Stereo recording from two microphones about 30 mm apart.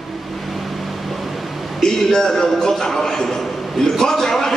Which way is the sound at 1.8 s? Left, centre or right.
Left.